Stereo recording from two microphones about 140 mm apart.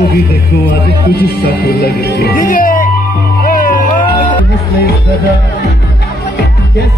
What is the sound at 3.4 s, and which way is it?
Music, 85° left.